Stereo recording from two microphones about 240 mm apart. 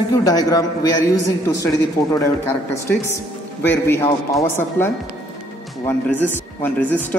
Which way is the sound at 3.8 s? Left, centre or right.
Centre.